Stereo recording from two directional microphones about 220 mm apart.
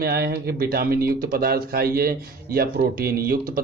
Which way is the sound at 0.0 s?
45° right (ahead or behind).